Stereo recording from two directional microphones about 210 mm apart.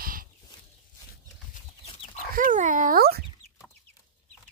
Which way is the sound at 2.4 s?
40° right (ahead or behind).